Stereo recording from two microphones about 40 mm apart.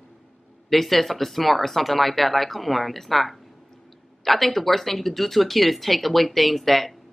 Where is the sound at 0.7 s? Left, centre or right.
Centre.